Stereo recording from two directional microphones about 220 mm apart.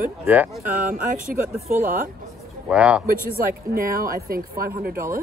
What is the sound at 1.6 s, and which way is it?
Speech, 40° right (ahead or behind).